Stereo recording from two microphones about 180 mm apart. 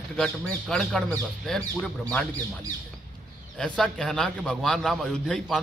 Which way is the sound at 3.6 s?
Centre (ahead or behind).